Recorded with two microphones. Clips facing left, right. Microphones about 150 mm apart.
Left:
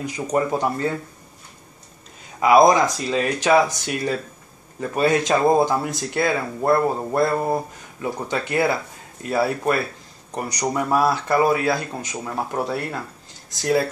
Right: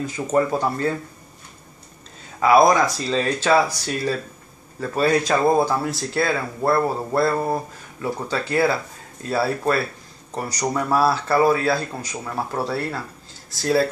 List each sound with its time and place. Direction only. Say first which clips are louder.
0.0 s speech: right 2 dB; 15° left (ahead or behind)
2.4 s speech: left 1 dB; 20° left (ahead or behind)